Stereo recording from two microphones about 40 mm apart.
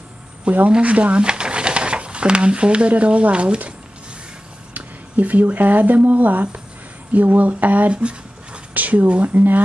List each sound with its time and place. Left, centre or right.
0.7 s speech: right
4.7 s speech: right
7.9 s speech: right
8.7 s speech: right